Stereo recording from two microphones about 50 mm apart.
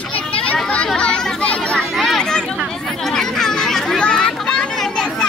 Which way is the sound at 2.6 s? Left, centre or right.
Centre.